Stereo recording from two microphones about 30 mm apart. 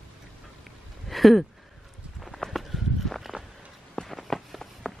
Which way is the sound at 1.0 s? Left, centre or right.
Centre.